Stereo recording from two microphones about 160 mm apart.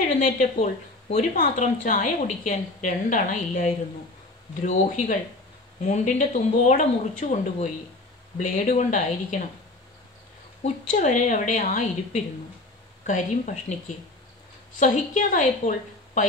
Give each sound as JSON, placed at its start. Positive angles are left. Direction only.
{"t": 0.2, "sound": "a woman's voice", "side_deg": 55}
{"t": 10.6, "sound": "a woman's voice", "side_deg": 50}